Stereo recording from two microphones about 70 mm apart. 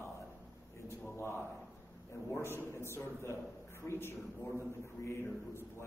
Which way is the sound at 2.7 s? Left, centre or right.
Left.